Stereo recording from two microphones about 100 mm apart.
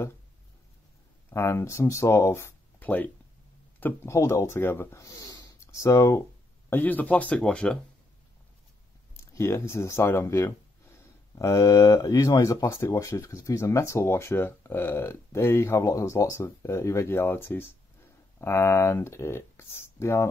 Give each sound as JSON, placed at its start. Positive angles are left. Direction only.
{"t": 1.3, "sound": "speech", "side_deg": 30}
{"t": 2.8, "sound": "speech", "side_deg": 15}
{"t": 3.8, "sound": "speech", "side_deg": 25}
{"t": 6.7, "sound": "speech", "side_deg": 15}
{"t": 9.1, "sound": "speech", "side_deg": 30}